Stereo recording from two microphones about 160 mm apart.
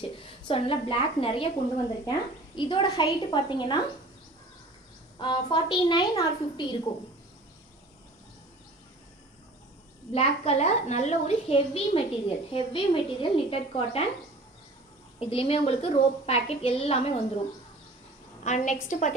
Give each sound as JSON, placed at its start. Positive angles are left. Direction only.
{"t": 0.1, "sound": "a woman's voice", "side_deg": 35}
{"t": 5.2, "sound": "a woman's voice", "side_deg": 30}
{"t": 10.1, "sound": "a woman's voice", "side_deg": 40}
{"t": 15.1, "sound": "a woman's voice", "side_deg": 35}
{"t": 18.4, "sound": "a woman's voice", "side_deg": 45}